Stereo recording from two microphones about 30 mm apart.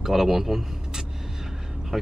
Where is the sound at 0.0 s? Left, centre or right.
Centre.